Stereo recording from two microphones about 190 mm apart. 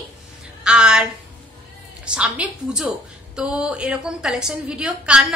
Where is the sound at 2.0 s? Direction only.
5° right (ahead or behind).